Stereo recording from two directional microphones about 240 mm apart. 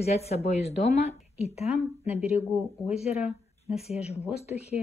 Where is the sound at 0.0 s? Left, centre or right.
Left.